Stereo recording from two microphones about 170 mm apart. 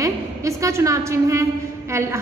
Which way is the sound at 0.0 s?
20° right (ahead or behind).